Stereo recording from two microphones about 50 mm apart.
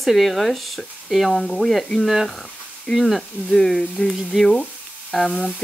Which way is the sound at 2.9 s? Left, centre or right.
Centre.